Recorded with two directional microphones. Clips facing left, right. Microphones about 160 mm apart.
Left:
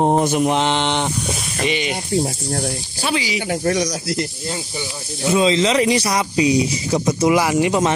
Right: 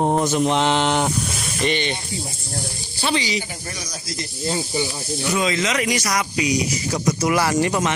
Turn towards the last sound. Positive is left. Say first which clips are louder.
# left 2 dB
turn(degrees=15)  # may be behind; listen again after turning